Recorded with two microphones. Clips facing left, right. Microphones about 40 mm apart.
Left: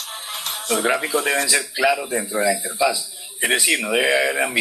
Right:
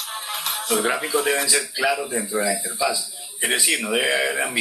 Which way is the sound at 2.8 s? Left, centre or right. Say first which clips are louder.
Left 3 dB; left.